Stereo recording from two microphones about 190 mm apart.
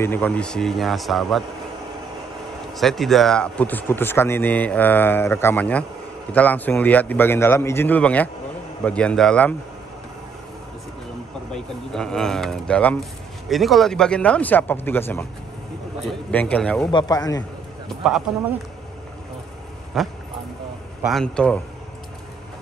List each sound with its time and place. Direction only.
0.0 s speech: 10° left (ahead or behind)
2.7 s speech: centre (ahead or behind)
11.5 s speech: 5° left (ahead or behind)
16.9 s speech: 20° left (ahead or behind)
17.4 s a sound: centre (ahead or behind)
19.9 s speech: centre (ahead or behind)